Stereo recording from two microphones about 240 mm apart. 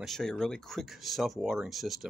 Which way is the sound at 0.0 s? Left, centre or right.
Centre.